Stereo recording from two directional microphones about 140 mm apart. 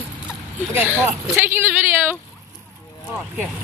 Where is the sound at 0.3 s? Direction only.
15° right (ahead or behind).